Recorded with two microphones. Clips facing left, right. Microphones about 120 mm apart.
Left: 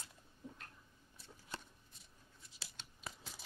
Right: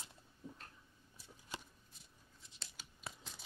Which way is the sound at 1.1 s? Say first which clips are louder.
Even; 10° right (ahead or behind).